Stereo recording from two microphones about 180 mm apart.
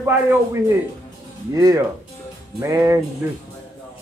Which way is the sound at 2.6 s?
15° right (ahead or behind).